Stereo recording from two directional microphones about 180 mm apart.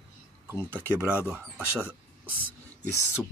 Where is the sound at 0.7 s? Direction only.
10° right (ahead or behind).